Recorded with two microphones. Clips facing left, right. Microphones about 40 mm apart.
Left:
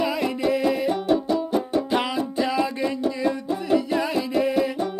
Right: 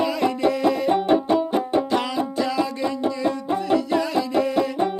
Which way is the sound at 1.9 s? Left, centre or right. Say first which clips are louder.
Right 1 dB; centre.